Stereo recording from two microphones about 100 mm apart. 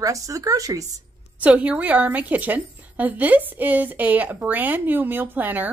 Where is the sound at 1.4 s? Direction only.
15° right (ahead or behind).